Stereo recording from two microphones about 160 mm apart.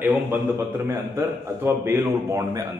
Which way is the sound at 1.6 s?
15° right (ahead or behind).